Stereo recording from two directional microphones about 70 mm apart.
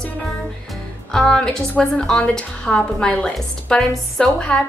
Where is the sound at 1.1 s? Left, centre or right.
Centre.